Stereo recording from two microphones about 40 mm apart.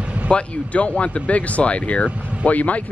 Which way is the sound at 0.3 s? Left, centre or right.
Left.